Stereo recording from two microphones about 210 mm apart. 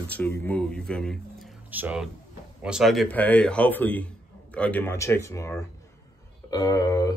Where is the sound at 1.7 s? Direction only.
5° right (ahead or behind).